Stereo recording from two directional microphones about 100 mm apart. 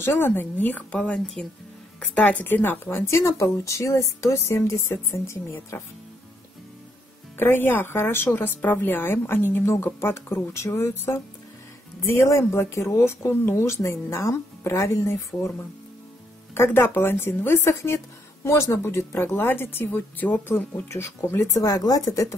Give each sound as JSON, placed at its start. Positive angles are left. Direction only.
{"t": 0.0, "sound": "a woman's voice", "side_deg": 25}
{"t": 0.9, "sound": "a woman's voice", "side_deg": 10}
{"t": 7.3, "sound": "a woman's voice", "side_deg": 20}
{"t": 16.5, "sound": "a woman's voice", "side_deg": 25}